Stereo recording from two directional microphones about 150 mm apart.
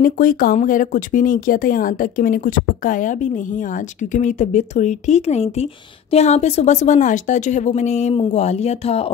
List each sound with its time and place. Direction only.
0.0 s speech: 70° left (ahead or behind); by 9.1 s 45° left (ahead or behind)